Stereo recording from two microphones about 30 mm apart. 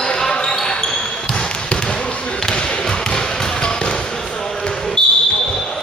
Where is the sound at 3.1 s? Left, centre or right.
Left.